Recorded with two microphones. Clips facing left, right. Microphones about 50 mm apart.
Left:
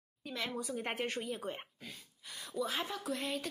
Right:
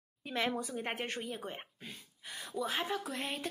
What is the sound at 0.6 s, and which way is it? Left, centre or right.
Speech, centre.